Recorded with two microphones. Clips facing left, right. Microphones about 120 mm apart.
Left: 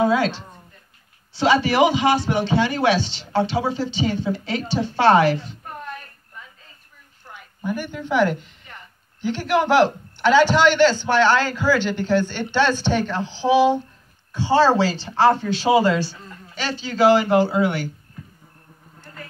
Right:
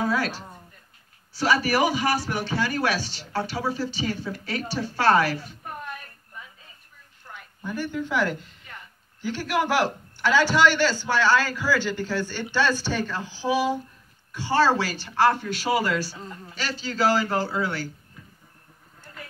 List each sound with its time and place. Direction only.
0.1 s a man's voice: 25° left (ahead or behind)
7.3 s a sound: 10° left (ahead or behind)
7.6 s a woman's voice: 15° left (ahead or behind)